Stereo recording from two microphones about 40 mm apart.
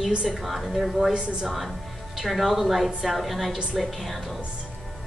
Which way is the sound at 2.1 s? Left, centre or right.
Centre.